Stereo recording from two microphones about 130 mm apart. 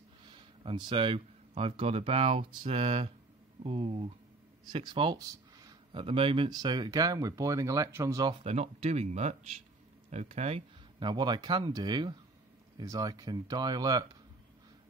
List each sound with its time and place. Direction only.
0.2 s speech: 35° right (ahead or behind)
8.5 s speech: 55° right (ahead or behind)
11.0 s speech: 35° right (ahead or behind)